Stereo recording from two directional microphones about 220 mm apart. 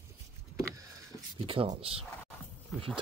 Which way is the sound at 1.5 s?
25° right (ahead or behind).